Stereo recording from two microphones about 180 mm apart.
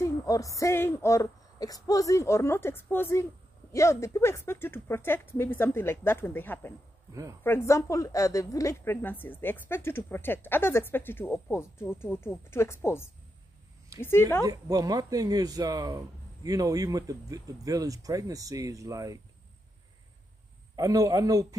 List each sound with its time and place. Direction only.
0.0 s a woman's voice: 20° left (ahead or behind)
14.4 s speech: 20° right (ahead or behind)
20.7 s speech: 20° right (ahead or behind)